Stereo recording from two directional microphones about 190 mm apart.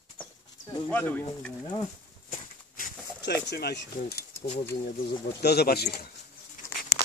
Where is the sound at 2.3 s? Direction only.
50° left (ahead or behind).